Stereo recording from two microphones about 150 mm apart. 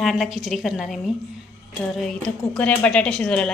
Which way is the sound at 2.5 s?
10° left (ahead or behind).